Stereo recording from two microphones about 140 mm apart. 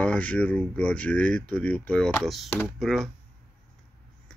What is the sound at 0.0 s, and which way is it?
Speech, 10° left (ahead or behind).